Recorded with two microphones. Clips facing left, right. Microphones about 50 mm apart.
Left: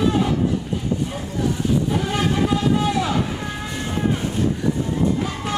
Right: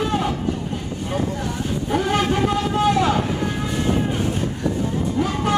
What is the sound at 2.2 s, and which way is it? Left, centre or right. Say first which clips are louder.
Vehicle: right 1 dB; centre.